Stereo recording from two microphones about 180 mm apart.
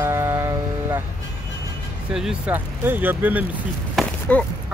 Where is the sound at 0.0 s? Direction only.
15° right (ahead or behind).